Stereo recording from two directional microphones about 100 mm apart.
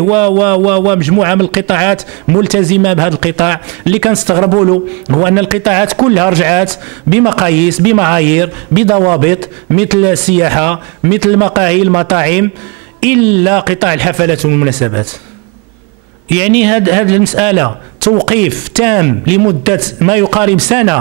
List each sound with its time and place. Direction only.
0.0 s a man's voice: 20° right (ahead or behind)
16.3 s a man's voice: 20° right (ahead or behind)